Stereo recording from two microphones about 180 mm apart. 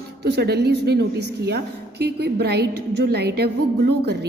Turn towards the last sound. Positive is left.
turn(degrees=-65)  # may be behind; listen again after turning